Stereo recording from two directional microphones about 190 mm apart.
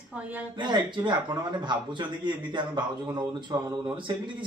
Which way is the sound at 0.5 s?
25° right (ahead or behind).